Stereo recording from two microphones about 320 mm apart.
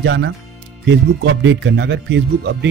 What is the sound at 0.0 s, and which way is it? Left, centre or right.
Speech, right.